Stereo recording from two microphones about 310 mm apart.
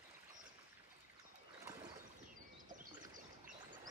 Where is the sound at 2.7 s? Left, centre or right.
Right.